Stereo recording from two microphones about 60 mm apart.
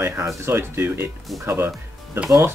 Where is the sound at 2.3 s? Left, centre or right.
Right.